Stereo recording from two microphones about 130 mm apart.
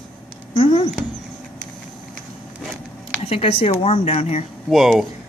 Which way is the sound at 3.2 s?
50° left (ahead or behind).